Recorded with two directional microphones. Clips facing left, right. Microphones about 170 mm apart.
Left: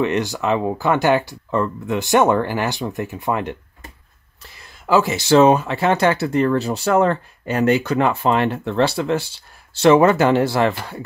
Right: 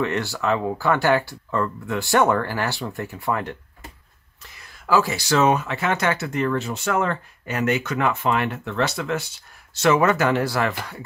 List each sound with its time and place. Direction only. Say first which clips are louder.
0.0 s speech: left 4 dB; 20° left (ahead or behind)
4.6 s speech: left 3 dB; 25° left (ahead or behind)